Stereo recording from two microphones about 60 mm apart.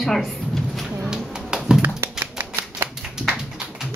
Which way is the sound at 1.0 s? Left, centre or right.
Centre.